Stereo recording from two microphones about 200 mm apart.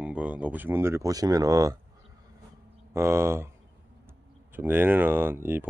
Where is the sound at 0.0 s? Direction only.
5° right (ahead or behind).